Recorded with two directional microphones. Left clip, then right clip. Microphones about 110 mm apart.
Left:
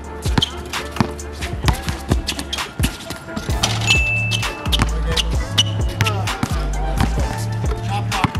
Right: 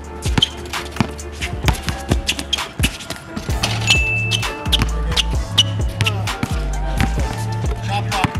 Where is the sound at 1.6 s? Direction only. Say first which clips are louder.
Even; 15° right (ahead or behind).